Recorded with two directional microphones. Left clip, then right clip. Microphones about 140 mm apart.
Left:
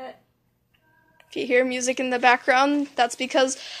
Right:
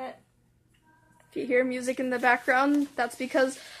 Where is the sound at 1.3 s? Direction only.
20° left (ahead or behind).